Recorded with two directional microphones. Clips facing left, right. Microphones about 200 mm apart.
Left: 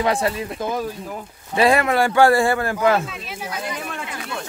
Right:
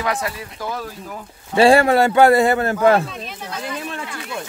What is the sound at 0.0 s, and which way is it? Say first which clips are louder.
Speech: left 4 dB; 30° left (ahead or behind).